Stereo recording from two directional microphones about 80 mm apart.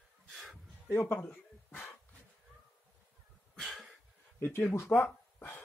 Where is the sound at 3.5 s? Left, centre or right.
Centre.